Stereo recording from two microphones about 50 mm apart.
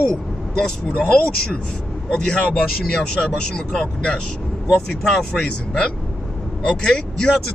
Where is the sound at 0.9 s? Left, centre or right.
Left.